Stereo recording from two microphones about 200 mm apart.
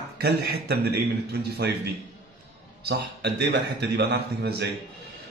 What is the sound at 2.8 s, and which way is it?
A man's voice, 55° right (ahead or behind).